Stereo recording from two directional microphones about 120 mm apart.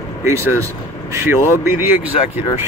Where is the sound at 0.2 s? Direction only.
25° right (ahead or behind).